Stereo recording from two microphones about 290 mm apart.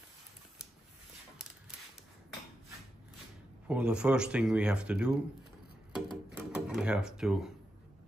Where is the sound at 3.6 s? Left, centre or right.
Centre.